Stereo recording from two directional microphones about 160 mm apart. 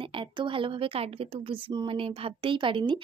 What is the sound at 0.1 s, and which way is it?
Speech, 30° right (ahead or behind).